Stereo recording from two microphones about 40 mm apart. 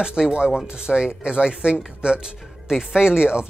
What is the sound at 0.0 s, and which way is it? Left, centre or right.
Speech, centre.